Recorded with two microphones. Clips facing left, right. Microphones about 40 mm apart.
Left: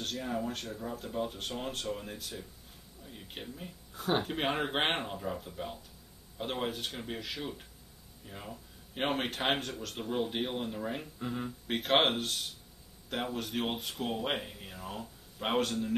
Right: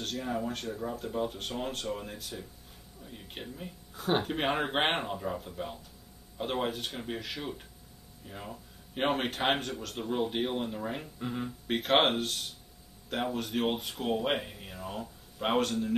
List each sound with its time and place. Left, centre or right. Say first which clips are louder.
0.0 s speech: right 1 dB; centre